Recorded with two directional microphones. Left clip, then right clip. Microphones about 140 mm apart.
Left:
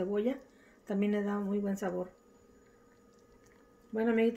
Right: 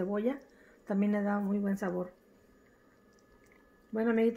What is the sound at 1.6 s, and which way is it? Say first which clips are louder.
Speech: right 1 dB; 25° right (ahead or behind).